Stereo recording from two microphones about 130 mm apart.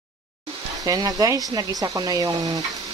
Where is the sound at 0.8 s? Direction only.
30° right (ahead or behind).